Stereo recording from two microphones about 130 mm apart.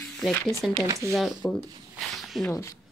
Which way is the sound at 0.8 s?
25° right (ahead or behind).